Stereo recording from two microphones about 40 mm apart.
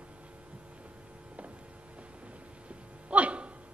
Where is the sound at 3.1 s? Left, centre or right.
Right.